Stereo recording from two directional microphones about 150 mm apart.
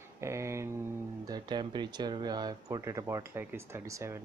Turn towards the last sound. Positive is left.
turn(degrees=-15)  # may be behind; listen again after turning